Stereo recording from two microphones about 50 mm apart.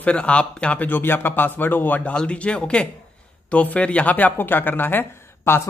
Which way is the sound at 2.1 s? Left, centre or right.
Left.